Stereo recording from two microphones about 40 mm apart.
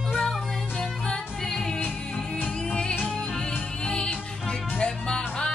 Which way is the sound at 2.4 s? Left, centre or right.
Left.